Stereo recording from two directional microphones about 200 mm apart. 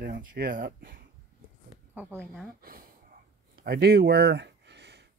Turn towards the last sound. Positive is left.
turn(degrees=-60)  # may be behind; listen again after turning